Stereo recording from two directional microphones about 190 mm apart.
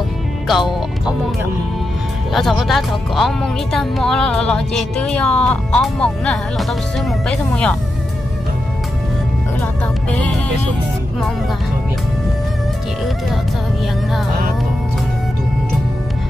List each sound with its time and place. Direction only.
0.5 s speech: centre (ahead or behind)
2.3 s speech: centre (ahead or behind)